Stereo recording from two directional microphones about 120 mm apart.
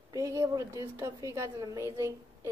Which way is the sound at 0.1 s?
25° right (ahead or behind).